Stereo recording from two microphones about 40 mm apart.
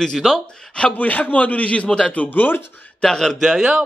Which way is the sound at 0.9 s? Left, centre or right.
Left.